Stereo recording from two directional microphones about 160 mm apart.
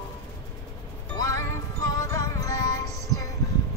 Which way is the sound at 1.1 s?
20° left (ahead or behind).